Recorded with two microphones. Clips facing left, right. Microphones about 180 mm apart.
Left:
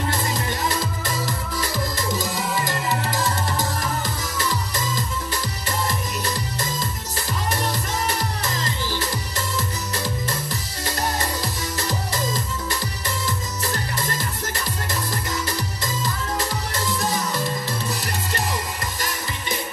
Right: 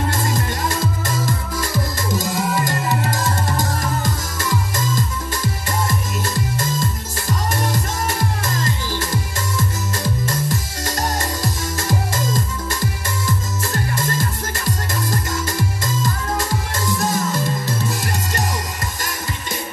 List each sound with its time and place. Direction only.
0.1 s music: 45° right (ahead or behind)
9.9 s music: 45° right (ahead or behind)
15.0 s music: 45° right (ahead or behind)